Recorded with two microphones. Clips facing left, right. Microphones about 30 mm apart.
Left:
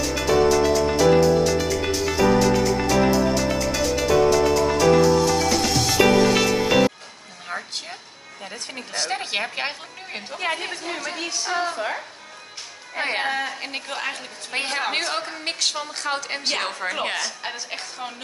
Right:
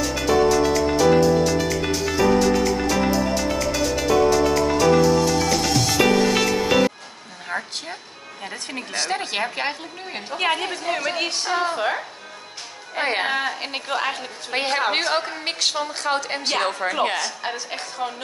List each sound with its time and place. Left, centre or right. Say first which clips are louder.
0.0 s music: even; centre
7.5 s a sound: right 3 dB; centre
8.9 s a woman's voice: right 1 dB; centre
10.3 s a woman's voice: right 4 dB; right
10.6 s a woman's voice: right 3 dB; centre
11.1 s music: right 4 dB; right
11.7 s speech: right 4 dB; right
12.9 s a woman's voice: right 2 dB; centre
13.3 s a woman's voice: right 2 dB; right; by 18.1 s centre